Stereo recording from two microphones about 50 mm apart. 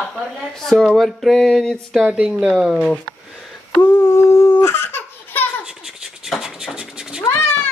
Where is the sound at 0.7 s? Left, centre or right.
Centre.